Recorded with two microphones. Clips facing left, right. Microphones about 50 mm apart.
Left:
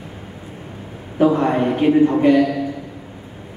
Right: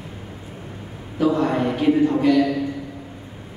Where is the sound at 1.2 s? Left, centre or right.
Left.